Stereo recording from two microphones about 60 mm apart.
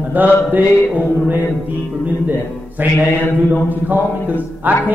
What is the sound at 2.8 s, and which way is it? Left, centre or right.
Mantra, right.